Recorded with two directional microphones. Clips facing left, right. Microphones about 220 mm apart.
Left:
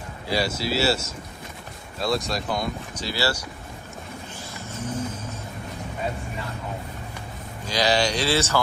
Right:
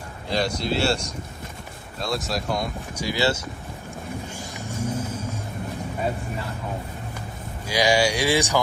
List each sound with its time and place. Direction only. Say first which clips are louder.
0.3 s speech: right 1 dB; 5° left (ahead or behind)
3.0 s speech: right 4 dB; 15° right (ahead or behind)
4.4 s vehicle: right 2 dB; 15° right (ahead or behind)
7.6 s speech: right 2 dB; 10° right (ahead or behind)